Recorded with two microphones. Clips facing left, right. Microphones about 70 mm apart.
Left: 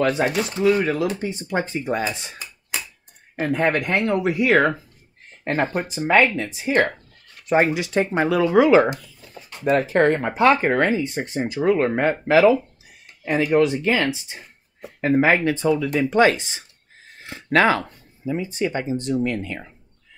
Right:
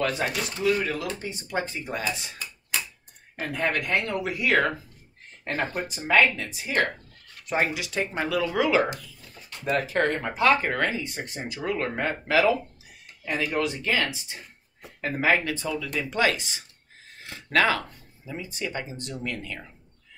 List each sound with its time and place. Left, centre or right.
0.0 s speech: left
3.3 s speech: left
14.8 s a sound: left
15.2 s speech: left